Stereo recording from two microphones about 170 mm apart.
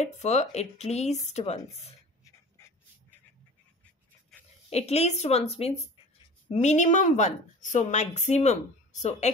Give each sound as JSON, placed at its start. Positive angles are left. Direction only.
{"t": 0.0, "sound": "a woman's voice", "side_deg": 40}
{"t": 4.6, "sound": "a woman's voice", "side_deg": 40}